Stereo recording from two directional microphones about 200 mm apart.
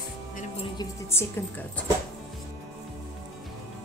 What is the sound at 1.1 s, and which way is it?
Speech, 10° left (ahead or behind).